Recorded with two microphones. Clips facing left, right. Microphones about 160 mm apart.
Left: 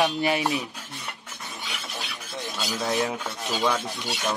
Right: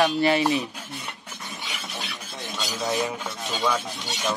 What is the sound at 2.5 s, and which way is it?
Speech, centre (ahead or behind).